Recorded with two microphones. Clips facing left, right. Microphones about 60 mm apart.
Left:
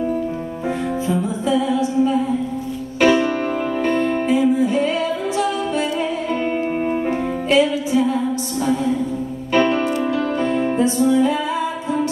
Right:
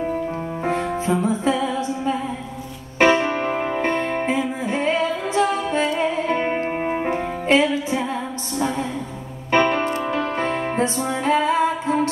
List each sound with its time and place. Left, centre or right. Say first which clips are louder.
0.7 s music: even; right
3.0 s music: left 1 dB; right